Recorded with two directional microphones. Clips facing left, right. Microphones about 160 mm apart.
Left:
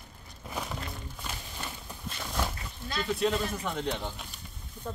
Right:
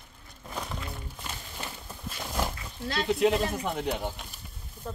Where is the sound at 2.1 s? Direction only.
10° right (ahead or behind).